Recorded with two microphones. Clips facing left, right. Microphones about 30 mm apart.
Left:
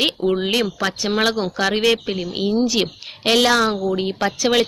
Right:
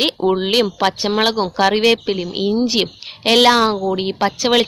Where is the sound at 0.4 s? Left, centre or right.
Right.